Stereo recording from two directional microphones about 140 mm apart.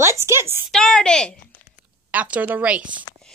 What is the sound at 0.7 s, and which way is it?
Speech, 5° left (ahead or behind).